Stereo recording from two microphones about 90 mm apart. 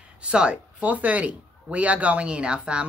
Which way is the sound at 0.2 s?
10° right (ahead or behind).